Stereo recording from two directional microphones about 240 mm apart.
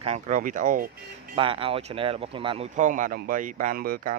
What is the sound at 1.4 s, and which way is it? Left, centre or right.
Speech, right.